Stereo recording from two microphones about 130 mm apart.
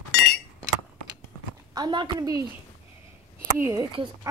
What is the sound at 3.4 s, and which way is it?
Speech, 20° right (ahead or behind).